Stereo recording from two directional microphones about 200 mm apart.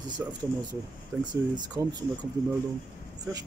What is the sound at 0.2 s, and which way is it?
Speech, 10° right (ahead or behind).